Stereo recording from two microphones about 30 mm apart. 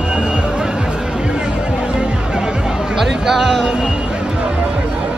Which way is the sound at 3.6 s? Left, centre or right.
Right.